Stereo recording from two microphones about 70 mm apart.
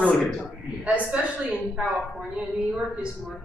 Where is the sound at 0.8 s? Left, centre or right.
Centre.